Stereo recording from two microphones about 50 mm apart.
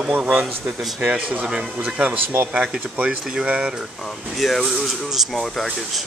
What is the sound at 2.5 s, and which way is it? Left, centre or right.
Speech, centre.